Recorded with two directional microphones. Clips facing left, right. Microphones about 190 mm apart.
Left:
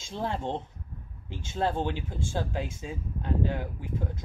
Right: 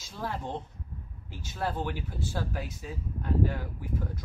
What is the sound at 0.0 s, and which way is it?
Speech, 25° left (ahead or behind).